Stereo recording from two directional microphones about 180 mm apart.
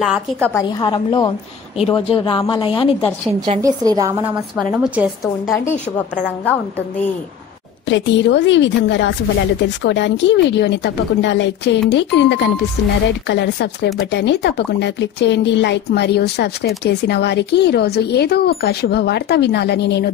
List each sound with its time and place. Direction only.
0.0 s a woman's voice: 5° right (ahead or behind)
0.5 s speech: 20° left (ahead or behind)
3.3 s a woman's voice: 25° right (ahead or behind); by 5.1 s 5° right (ahead or behind)
5.2 s a woman's voice: 15° left (ahead or behind)
7.9 s a woman's voice: 80° left